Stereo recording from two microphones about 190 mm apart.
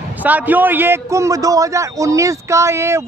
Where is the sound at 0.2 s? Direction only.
10° right (ahead or behind).